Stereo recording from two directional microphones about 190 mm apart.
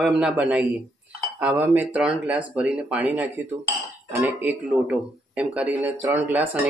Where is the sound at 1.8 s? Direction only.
5° right (ahead or behind).